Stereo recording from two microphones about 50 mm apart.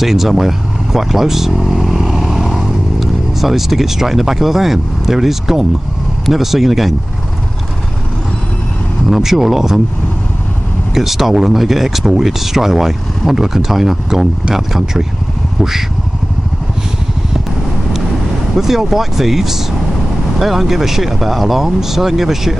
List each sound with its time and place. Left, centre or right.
0.0 s speech: centre
9.1 s speech: centre
11.0 s speech: centre
18.6 s speech: centre